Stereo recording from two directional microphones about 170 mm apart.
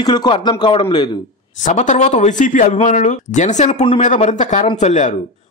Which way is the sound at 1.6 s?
45° left (ahead or behind).